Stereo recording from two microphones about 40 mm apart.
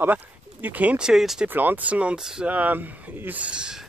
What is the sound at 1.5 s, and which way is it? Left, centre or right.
Speech, right.